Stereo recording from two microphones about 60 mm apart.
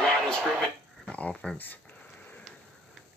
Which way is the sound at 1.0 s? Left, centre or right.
Left.